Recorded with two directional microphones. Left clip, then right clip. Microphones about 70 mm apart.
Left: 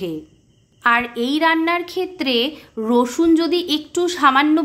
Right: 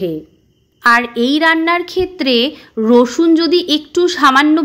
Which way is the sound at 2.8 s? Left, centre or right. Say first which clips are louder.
Right 6 dB; right.